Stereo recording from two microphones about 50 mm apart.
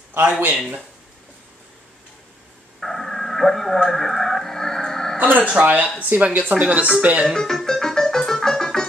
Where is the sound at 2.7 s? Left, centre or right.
Centre.